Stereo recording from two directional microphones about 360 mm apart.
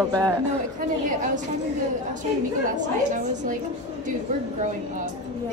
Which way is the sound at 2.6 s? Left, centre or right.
Right.